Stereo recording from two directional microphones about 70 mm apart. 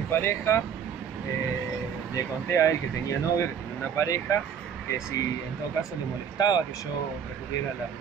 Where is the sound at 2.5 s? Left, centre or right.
Left.